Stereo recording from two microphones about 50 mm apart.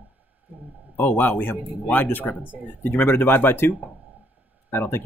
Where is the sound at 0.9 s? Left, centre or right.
Left.